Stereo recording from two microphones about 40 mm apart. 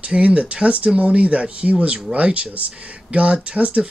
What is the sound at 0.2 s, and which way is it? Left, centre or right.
Speech, right.